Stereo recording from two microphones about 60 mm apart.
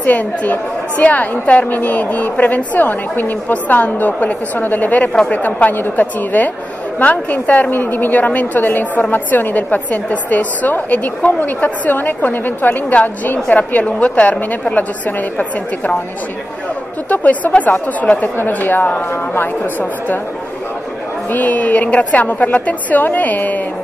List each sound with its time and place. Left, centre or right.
0.0 s a woman's voice: left
17.1 s a woman's voice: left
21.3 s a woman's voice: left